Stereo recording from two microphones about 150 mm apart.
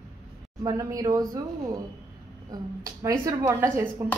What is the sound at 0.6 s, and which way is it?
A woman's voice, 25° right (ahead or behind).